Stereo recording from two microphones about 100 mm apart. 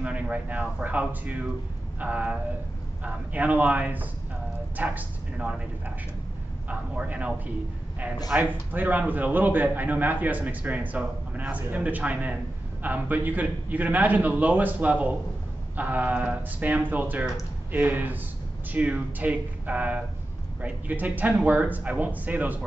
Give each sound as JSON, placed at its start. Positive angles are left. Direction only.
{"t": 0.0, "sound": "a man's voice", "side_deg": -15}